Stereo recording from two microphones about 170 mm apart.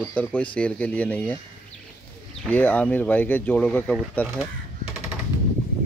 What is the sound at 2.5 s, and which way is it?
Speech, 10° left (ahead or behind).